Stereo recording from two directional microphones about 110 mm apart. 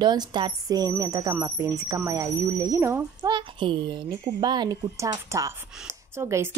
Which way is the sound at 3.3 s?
50° right (ahead or behind).